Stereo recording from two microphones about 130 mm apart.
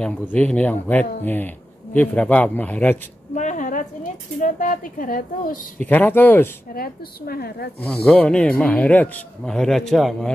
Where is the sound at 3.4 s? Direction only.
75° left (ahead or behind).